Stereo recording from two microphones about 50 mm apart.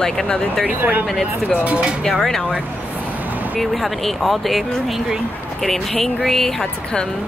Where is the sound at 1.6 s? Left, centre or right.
Right.